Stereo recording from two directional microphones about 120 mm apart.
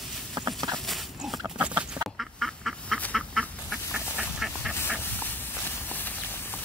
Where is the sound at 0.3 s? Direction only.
30° right (ahead or behind).